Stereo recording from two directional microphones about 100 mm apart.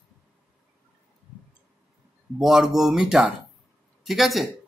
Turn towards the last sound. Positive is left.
turn(degrees=0)  # may be behind; listen again after turning